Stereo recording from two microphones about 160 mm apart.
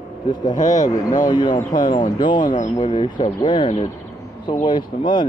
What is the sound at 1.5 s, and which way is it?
Speech, 55° left (ahead or behind).